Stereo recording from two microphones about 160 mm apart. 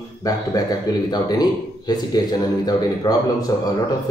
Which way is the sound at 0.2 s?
25° left (ahead or behind).